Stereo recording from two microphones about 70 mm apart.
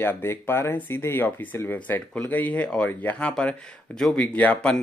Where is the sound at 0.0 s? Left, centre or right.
Left.